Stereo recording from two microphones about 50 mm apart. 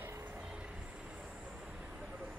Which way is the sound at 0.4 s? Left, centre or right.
Right.